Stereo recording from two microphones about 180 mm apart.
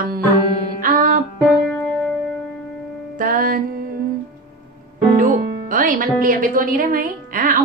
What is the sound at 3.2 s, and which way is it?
Music, 50° right (ahead or behind).